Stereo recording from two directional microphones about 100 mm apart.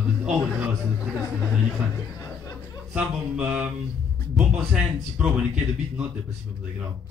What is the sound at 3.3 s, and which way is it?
A man's voice, 15° right (ahead or behind).